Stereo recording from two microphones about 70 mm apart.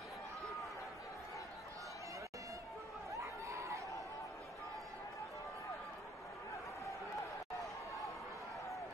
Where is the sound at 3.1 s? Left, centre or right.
Right.